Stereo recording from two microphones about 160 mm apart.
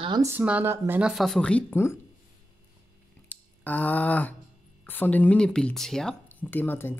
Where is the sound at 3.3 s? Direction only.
10° left (ahead or behind).